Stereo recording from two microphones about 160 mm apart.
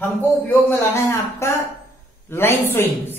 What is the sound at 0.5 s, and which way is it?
Speech, 15° left (ahead or behind).